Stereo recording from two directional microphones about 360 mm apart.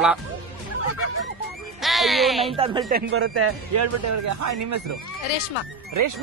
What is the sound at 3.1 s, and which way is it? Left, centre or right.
Speech, right.